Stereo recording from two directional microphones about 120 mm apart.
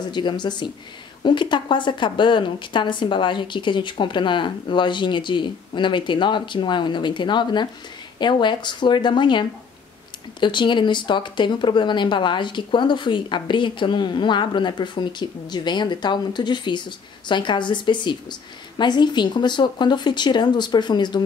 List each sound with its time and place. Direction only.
0.0 s a woman's voice: 40° left (ahead or behind)